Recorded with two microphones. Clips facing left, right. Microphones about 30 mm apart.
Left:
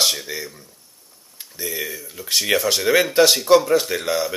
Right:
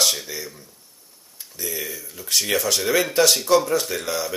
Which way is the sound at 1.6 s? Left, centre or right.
Centre.